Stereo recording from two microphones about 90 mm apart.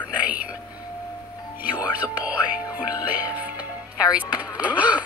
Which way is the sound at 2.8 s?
50° left (ahead or behind).